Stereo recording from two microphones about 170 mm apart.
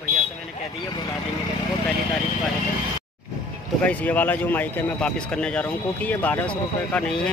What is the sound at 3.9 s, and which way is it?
Speech, 10° left (ahead or behind).